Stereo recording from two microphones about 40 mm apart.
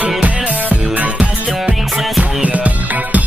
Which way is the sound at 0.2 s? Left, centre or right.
Right.